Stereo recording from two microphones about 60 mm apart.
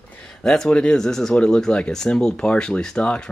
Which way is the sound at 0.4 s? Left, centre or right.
Centre.